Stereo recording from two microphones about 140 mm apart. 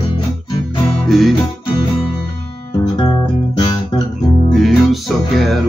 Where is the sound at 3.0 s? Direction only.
30° left (ahead or behind).